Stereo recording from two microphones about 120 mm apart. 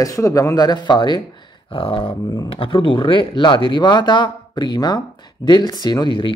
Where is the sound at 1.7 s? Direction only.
50° left (ahead or behind).